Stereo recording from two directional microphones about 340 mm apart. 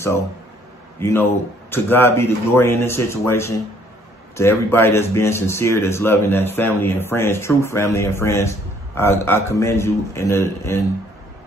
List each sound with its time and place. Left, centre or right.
1.0 s speech: centre